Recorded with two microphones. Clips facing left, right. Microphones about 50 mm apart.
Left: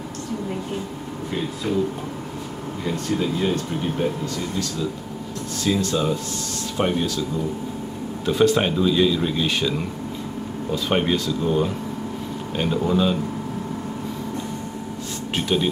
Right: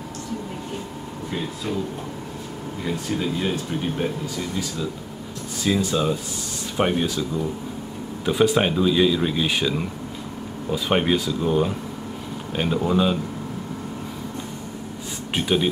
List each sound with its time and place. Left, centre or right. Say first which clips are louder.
2.8 s speech: left 2 dB; centre
5.6 s speech: even; centre
8.3 s speech: left 1 dB; centre
15.3 s speech: right 1 dB; centre